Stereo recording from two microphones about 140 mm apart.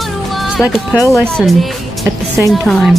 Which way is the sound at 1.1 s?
Centre (ahead or behind).